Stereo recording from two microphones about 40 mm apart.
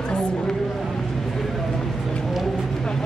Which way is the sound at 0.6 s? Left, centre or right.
Centre.